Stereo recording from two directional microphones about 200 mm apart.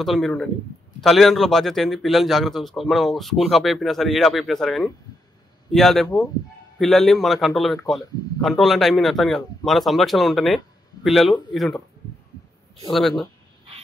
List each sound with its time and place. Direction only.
0.0 s a man's voice: centre (ahead or behind)